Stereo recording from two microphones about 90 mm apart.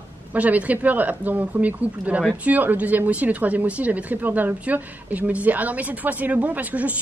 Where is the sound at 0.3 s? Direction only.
15° right (ahead or behind).